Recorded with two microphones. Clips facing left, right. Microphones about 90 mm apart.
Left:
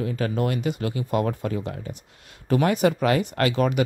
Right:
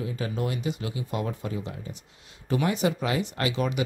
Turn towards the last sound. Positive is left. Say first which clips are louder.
# left 6 dB
turn(degrees=50)  # may be behind; listen again after turning